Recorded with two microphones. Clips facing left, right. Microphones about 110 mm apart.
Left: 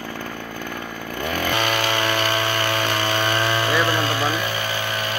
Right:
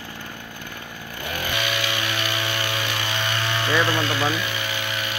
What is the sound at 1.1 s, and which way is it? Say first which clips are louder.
Chainsaw: left 5 dB; 55° left (ahead or behind).